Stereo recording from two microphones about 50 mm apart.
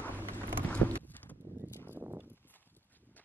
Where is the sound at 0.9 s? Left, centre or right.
Left.